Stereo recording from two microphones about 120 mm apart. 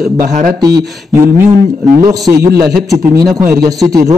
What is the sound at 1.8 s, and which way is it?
A man's voice, 30° right (ahead or behind).